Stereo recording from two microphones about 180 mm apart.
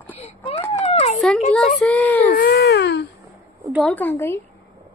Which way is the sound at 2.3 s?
65° left (ahead or behind).